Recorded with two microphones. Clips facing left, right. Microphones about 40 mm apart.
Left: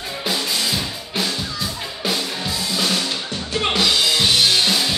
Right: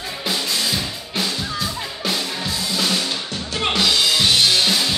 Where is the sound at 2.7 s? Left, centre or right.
Centre.